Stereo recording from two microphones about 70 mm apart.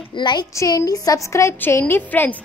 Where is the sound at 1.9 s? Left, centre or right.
Left.